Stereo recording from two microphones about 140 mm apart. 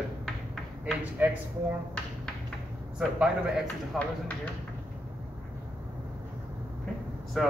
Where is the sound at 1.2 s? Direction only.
15° right (ahead or behind).